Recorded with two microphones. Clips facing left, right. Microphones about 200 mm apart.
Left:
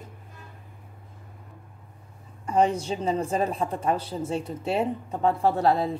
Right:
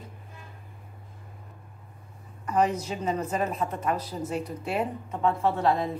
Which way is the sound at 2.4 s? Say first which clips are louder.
Left 2 dB; 30° left (ahead or behind).